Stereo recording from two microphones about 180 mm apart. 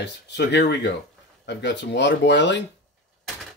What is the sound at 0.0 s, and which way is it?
Speech, 70° left (ahead or behind).